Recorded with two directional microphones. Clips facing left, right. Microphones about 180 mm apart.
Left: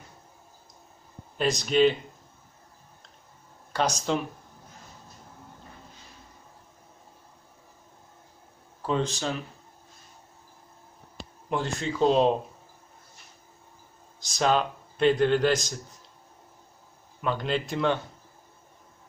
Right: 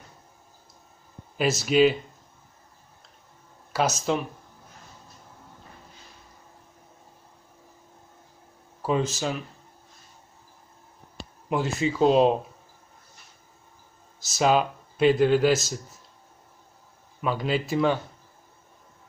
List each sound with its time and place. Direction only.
1.3 s a man's voice: 5° right (ahead or behind)
3.7 s a man's voice: 5° right (ahead or behind)
8.8 s a man's voice: 5° right (ahead or behind)
11.1 s speech: 5° right (ahead or behind)
14.2 s a man's voice: 5° right (ahead or behind)
17.2 s a man's voice: 5° right (ahead or behind)